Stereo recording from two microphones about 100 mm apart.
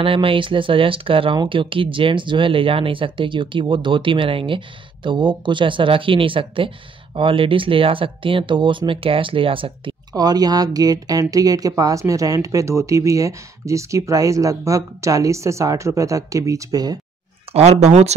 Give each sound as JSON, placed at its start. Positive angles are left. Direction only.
{"t": 0.0, "sound": "speech", "side_deg": -65}
{"t": 10.1, "sound": "a woman's voice", "side_deg": -40}
{"t": 17.5, "sound": "speech", "side_deg": -90}